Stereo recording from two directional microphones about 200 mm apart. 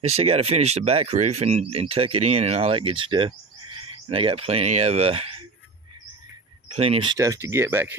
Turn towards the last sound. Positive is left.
turn(degrees=-10)  # may be behind; listen again after turning